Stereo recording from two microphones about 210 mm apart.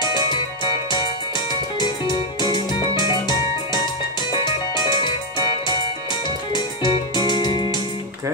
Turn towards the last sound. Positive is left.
turn(degrees=20)  # may be behind; listen again after turning